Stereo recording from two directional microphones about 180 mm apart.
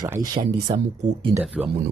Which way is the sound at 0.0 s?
20° right (ahead or behind).